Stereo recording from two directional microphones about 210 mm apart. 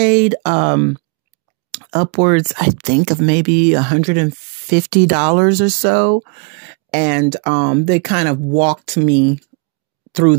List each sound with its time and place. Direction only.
0.0 s speech: 40° right (ahead or behind)